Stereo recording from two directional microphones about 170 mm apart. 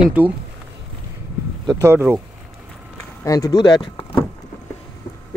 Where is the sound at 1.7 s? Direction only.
15° right (ahead or behind).